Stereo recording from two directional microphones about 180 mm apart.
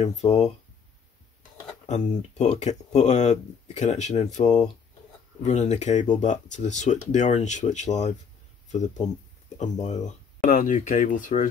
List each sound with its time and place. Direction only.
0.0 s speech: 40° left (ahead or behind)
1.9 s speech: 40° left (ahead or behind)
9.6 s speech: 40° left (ahead or behind)